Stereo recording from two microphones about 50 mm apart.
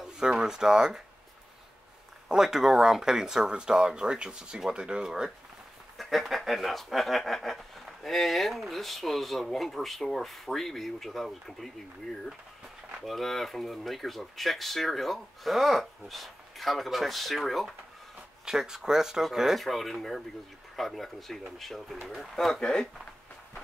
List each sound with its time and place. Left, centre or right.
0.0 s speech: centre
2.2 s speech: centre
5.9 s speech: centre
13.0 s speech: centre
18.4 s speech: centre
22.6 s speech: centre